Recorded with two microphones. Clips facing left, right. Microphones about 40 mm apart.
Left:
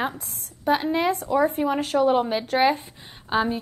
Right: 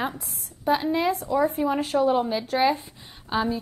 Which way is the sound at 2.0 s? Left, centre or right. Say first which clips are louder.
Left 3 dB; left.